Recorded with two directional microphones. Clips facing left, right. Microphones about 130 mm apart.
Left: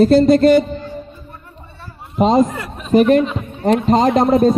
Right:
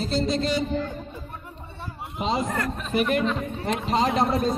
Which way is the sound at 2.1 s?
45° left (ahead or behind).